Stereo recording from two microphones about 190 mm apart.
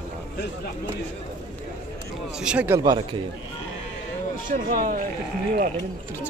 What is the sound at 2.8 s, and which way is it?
Speech, 20° right (ahead or behind).